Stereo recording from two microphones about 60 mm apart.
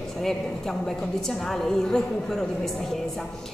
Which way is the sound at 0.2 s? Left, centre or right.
Centre.